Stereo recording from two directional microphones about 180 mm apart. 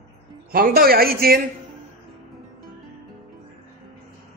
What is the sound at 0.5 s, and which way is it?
Speech, 55° right (ahead or behind).